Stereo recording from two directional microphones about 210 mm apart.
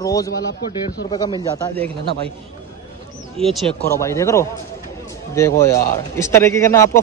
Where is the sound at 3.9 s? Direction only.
15° left (ahead or behind).